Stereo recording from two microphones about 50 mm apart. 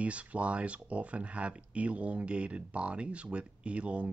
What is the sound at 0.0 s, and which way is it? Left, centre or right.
Speech, right.